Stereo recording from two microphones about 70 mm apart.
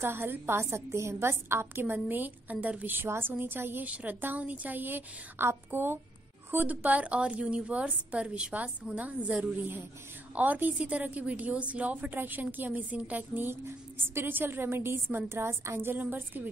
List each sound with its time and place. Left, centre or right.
0.0 s a woman's voice: right
13.5 s a woman's voice: right